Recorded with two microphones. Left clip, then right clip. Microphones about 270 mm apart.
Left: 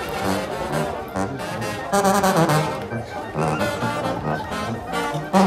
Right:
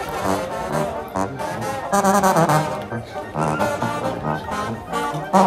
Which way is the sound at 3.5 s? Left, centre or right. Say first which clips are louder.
Right 2 dB; centre.